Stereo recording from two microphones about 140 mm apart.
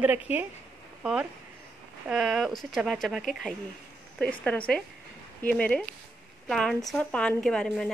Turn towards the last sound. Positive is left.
turn(degrees=5)  # may be behind; listen again after turning